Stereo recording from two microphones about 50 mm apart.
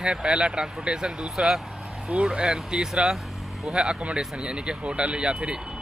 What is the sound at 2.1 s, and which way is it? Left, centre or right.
Speech, right.